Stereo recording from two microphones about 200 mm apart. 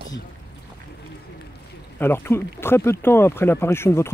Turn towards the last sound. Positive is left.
turn(degrees=15)  # may be behind; listen again after turning